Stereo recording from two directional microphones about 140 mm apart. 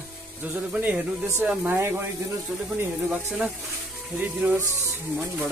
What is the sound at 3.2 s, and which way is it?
Speech, 5° right (ahead or behind).